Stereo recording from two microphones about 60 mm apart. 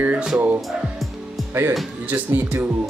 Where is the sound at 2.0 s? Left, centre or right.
Right.